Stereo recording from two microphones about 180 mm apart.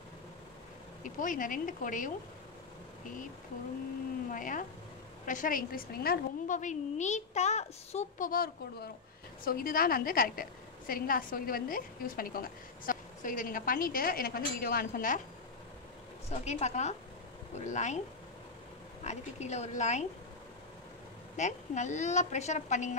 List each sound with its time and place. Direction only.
1.0 s a woman's voice: 45° left (ahead or behind)
4.3 s a woman's voice: 45° left (ahead or behind)
16.3 s a woman's voice: 40° left (ahead or behind)
19.0 s a woman's voice: 40° left (ahead or behind)
21.4 s a woman's voice: 40° left (ahead or behind)